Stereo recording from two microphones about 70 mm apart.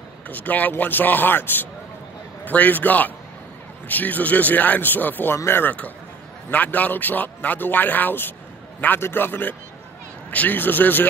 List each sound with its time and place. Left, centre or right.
0.3 s speech: left